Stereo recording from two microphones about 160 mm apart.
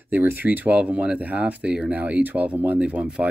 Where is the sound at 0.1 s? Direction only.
10° right (ahead or behind).